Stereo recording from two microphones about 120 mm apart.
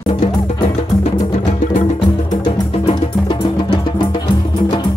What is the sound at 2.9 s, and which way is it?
Music, 45° left (ahead or behind).